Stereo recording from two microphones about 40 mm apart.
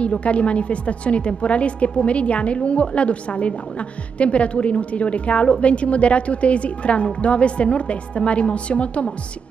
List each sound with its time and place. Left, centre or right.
0.0 s a woman's voice: left